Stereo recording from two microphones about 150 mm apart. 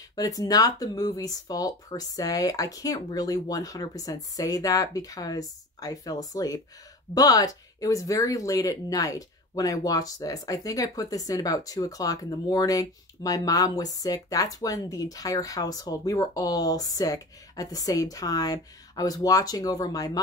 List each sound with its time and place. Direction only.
0.1 s speech: 25° left (ahead or behind)